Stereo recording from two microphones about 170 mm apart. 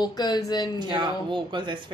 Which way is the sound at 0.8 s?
25° right (ahead or behind).